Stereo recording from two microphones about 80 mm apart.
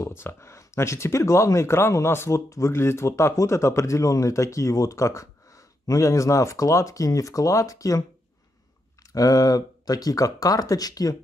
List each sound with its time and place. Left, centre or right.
0.0 s speech: left
9.0 s speech: left